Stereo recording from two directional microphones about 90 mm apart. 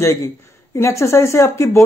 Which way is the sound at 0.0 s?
35° left (ahead or behind).